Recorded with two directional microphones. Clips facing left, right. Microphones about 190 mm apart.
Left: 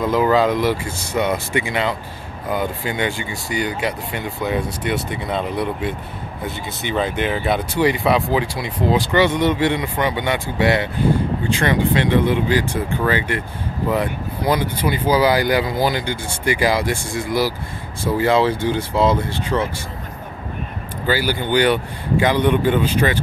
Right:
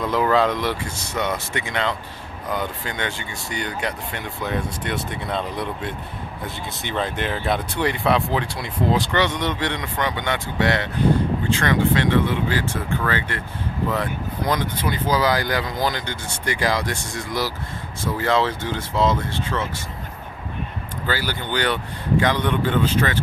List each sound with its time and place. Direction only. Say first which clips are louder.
0.0 s speech: left 3 dB; 5° left (ahead or behind)
14.5 s speech: left 5 dB; 10° left (ahead or behind)
21.1 s speech: left 7 dB; 10° left (ahead or behind)